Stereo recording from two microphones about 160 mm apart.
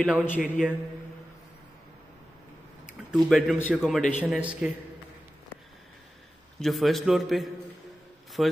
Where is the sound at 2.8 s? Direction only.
Centre (ahead or behind).